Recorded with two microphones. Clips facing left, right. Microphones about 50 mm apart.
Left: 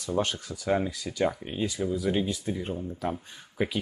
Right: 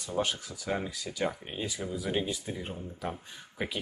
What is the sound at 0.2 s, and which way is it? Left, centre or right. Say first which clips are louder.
Speech: right 2 dB; centre.